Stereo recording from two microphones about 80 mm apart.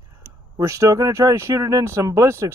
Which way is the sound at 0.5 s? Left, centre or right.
Right.